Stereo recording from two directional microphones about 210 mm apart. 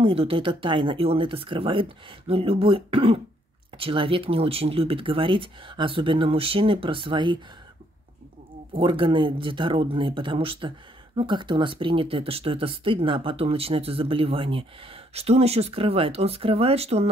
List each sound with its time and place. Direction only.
0.0 s speech: 25° right (ahead or behind)
8.7 s speech: 25° right (ahead or behind)